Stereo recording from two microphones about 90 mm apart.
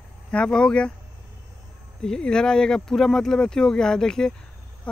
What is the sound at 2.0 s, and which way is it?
Speech, 10° left (ahead or behind).